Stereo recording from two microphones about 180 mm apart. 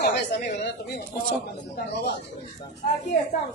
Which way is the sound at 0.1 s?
70° left (ahead or behind).